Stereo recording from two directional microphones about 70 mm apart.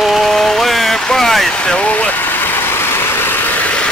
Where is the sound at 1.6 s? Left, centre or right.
Centre; by 3.6 s left.